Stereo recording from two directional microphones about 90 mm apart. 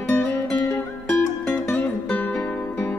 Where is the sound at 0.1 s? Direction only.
25° left (ahead or behind).